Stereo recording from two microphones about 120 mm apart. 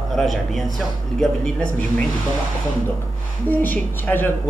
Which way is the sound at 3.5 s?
15° left (ahead or behind).